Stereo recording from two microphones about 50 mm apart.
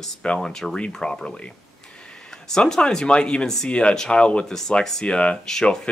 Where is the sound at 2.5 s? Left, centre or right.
Centre.